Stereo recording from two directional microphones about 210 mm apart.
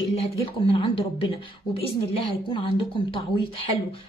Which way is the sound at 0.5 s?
25° left (ahead or behind).